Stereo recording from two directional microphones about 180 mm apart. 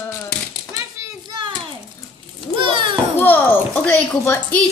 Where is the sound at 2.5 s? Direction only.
30° right (ahead or behind).